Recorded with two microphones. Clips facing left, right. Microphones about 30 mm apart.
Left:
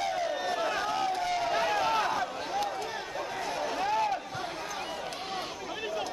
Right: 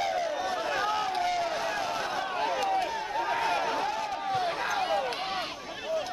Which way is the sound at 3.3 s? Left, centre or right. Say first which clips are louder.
Right 6 dB; right.